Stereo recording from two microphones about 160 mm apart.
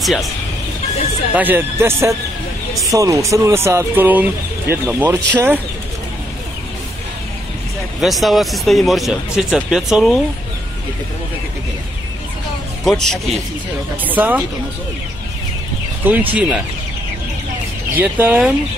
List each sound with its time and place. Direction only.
0.0 s speech: centre (ahead or behind)
1.3 s speech: 10° right (ahead or behind)
8.0 s speech: centre (ahead or behind)
12.8 s speech: 5° left (ahead or behind)
14.0 s speech: 10° right (ahead or behind)
16.1 s speech: 10° right (ahead or behind)
17.9 s speech: 10° right (ahead or behind)